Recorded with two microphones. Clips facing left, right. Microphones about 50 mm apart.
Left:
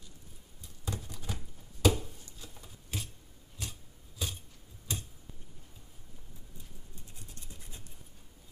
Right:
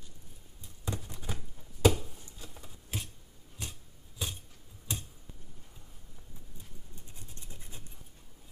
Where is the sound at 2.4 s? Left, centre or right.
Centre.